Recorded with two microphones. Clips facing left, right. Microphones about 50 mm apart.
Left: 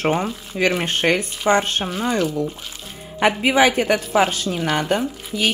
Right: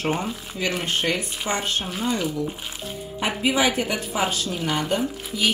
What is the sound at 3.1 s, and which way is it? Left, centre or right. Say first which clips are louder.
A woman's voice: left 6 dB; left.